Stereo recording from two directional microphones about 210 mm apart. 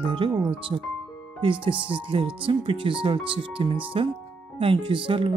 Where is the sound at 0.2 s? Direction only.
25° right (ahead or behind).